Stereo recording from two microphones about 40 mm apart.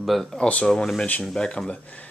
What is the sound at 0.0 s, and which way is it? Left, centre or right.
Speech, centre.